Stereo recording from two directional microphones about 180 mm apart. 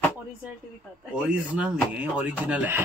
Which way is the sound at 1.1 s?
10° right (ahead or behind).